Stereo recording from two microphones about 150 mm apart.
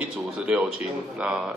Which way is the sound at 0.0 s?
10° right (ahead or behind).